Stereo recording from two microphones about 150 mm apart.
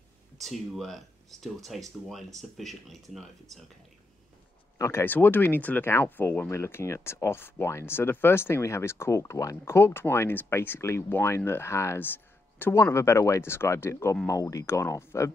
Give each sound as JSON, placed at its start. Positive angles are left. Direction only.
{"t": 0.4, "sound": "speech", "side_deg": 0}
{"t": 4.7, "sound": "speech", "side_deg": 20}